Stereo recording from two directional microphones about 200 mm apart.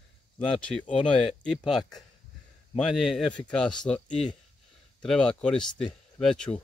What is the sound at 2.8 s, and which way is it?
Speech, 5° left (ahead or behind).